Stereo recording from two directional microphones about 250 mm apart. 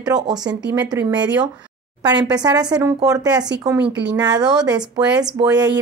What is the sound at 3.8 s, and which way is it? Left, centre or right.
Speech, right.